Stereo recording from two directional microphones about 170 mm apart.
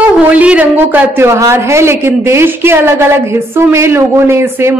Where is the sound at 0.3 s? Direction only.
10° right (ahead or behind).